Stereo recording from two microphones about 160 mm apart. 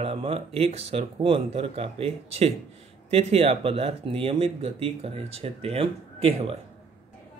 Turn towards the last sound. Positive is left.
turn(degrees=-40)  # may be behind; listen again after turning